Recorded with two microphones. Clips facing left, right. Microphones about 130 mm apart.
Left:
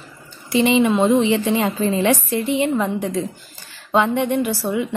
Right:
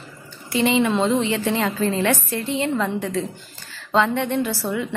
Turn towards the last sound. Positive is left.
turn(degrees=15)  # may be behind; listen again after turning